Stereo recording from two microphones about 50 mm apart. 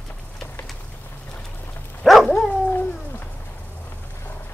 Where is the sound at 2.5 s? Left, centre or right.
Left.